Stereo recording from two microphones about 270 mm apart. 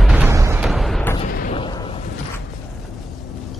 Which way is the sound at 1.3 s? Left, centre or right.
Left.